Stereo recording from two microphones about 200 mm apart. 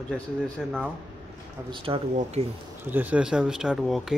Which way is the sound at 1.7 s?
25° right (ahead or behind).